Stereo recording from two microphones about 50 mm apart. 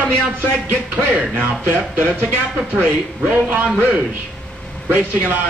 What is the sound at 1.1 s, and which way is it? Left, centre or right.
Speech, right.